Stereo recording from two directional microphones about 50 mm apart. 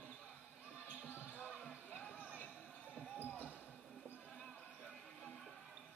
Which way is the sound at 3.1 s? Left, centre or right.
Left.